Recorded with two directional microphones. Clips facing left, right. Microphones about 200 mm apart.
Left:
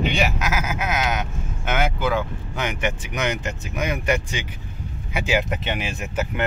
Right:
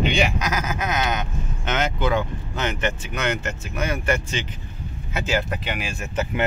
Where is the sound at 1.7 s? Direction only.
10° left (ahead or behind).